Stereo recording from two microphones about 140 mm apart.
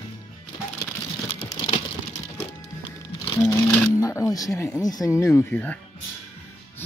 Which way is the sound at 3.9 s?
20° left (ahead or behind).